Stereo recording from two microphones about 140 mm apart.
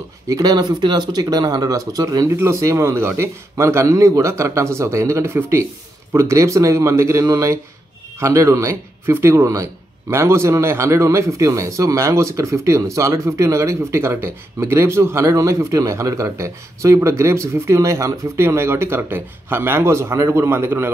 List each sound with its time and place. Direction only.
0.3 s a man's voice: 30° right (ahead or behind)